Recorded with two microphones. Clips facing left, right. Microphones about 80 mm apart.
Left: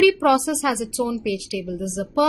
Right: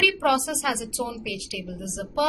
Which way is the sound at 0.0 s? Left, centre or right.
Left.